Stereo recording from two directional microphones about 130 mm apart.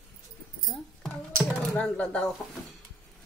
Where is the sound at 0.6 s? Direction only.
Centre (ahead or behind).